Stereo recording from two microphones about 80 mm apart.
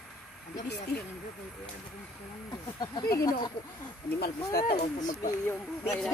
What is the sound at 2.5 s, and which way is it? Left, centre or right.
Speech, left.